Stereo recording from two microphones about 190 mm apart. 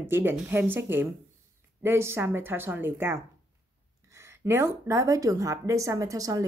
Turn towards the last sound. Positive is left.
turn(degrees=-20)  # may be behind; listen again after turning